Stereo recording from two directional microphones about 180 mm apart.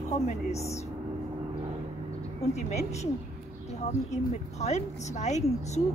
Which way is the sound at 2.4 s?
40° left (ahead or behind).